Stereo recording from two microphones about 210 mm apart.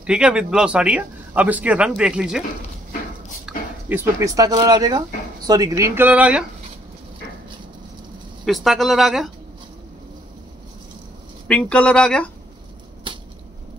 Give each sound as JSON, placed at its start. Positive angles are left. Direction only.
{"t": 0.0, "sound": "speech", "side_deg": -5}
{"t": 3.4, "sound": "speech", "side_deg": -10}
{"t": 8.5, "sound": "speech", "side_deg": 0}
{"t": 11.4, "sound": "speech", "side_deg": 5}
{"t": 13.1, "sound": "a sound", "side_deg": -25}